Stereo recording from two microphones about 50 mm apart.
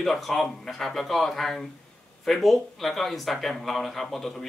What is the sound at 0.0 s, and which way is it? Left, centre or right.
Speech, centre.